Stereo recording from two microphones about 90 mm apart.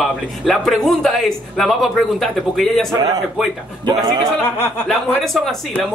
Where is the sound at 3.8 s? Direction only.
55° right (ahead or behind).